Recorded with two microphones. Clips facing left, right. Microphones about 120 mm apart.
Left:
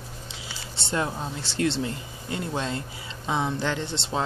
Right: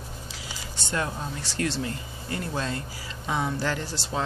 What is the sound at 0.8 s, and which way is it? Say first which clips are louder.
Speech: left 2 dB; 25° left (ahead or behind).